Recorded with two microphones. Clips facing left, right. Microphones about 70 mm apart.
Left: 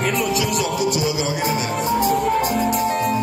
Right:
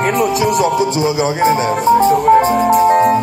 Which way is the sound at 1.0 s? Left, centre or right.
Right.